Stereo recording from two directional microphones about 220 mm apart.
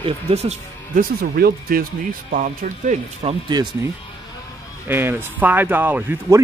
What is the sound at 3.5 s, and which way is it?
Speech, 20° right (ahead or behind).